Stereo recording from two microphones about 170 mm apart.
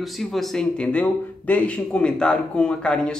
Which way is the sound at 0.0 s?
Centre (ahead or behind).